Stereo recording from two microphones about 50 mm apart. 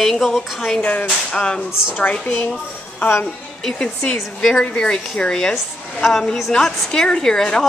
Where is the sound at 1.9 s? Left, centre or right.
Left.